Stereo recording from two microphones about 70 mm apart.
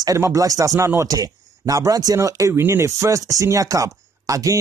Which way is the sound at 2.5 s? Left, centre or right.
Right.